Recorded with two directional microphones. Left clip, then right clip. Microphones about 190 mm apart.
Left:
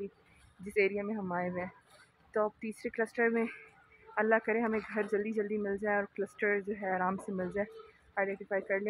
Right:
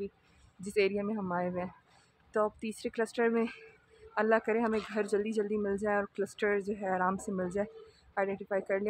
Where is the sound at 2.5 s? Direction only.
15° right (ahead or behind).